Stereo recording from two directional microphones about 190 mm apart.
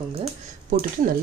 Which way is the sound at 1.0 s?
45° right (ahead or behind).